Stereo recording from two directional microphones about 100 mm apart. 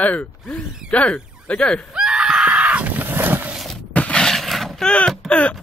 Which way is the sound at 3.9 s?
10° left (ahead or behind).